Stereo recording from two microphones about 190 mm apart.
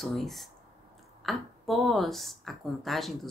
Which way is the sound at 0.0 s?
Centre (ahead or behind).